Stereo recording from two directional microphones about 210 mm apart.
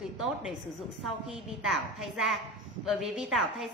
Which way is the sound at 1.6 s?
Centre (ahead or behind).